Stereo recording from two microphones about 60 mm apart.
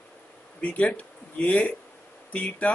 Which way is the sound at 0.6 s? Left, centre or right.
Left.